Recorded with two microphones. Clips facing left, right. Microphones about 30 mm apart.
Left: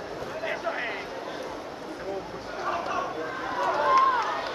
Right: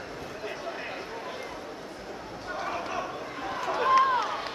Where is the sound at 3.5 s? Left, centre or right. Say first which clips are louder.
Left 1 dB; centre.